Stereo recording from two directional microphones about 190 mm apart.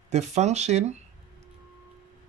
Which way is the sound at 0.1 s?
35° right (ahead or behind).